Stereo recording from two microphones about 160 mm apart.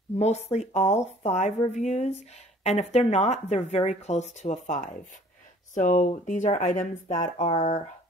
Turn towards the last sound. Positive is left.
turn(degrees=45)  # may be behind; listen again after turning